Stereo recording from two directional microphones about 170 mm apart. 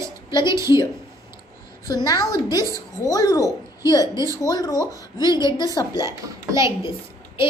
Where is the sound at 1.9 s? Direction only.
25° left (ahead or behind).